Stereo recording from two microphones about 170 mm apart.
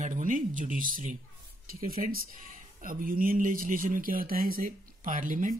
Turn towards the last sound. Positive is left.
turn(degrees=-50)  # may be behind; listen again after turning